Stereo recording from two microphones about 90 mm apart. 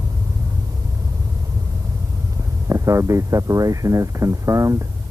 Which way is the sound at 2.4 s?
35° right (ahead or behind).